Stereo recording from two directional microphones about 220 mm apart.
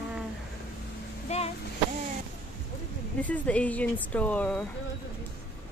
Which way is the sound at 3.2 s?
5° left (ahead or behind).